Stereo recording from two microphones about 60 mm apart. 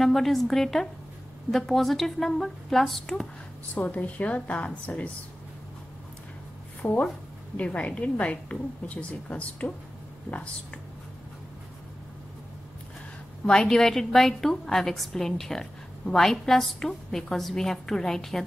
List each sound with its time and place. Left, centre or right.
0.0 s a woman's voice: centre
3.7 s a woman's voice: left
6.8 s a woman's voice: left
13.5 s a woman's voice: centre